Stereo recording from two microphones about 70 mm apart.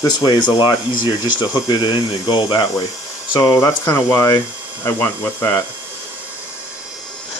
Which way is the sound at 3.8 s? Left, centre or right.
Left.